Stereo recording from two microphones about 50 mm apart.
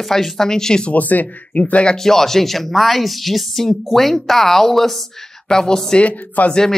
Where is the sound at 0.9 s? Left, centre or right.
Left.